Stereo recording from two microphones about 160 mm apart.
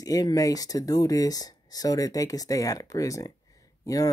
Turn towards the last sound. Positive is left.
turn(degrees=20)  # may be behind; listen again after turning